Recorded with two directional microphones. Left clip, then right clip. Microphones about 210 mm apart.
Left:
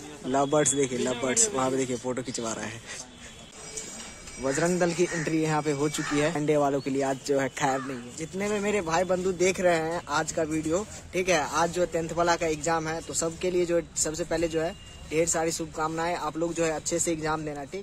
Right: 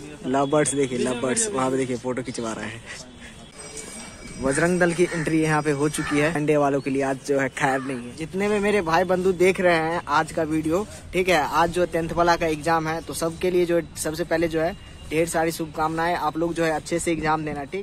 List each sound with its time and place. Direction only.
0.3 s a man's voice: 10° left (ahead or behind)
4.4 s speech: 5° left (ahead or behind)